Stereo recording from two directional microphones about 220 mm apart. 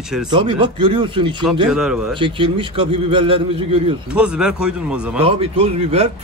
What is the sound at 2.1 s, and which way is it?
Speech, 25° right (ahead or behind).